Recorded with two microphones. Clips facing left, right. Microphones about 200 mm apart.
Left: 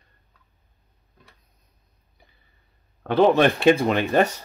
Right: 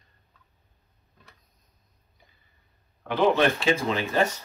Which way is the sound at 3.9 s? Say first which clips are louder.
Left 5 dB; 60° left (ahead or behind).